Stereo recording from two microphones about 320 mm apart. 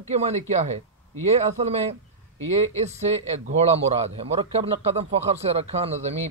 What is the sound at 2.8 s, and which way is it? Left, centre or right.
A man's voice, centre.